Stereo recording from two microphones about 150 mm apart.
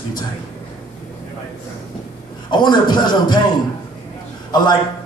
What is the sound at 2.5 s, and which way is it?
Speech, 30° left (ahead or behind).